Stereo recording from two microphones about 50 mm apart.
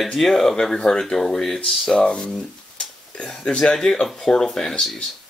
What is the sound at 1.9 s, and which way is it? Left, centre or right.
Speech, centre.